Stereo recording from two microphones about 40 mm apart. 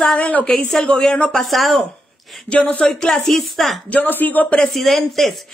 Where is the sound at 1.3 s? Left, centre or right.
Centre.